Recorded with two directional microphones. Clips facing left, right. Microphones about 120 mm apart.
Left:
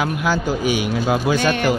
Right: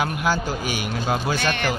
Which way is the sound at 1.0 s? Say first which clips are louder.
Left 4 dB; 10° left (ahead or behind).